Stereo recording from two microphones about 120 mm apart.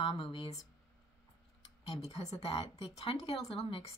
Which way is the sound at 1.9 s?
60° left (ahead or behind).